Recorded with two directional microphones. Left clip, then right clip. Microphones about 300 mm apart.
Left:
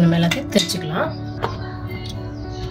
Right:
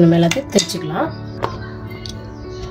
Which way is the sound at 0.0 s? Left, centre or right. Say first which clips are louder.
Right 6 dB; right.